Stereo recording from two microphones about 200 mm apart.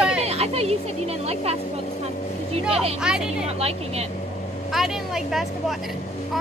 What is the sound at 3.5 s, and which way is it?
Speech, 30° right (ahead or behind).